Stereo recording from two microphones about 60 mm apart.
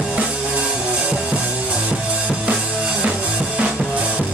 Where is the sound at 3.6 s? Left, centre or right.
Right.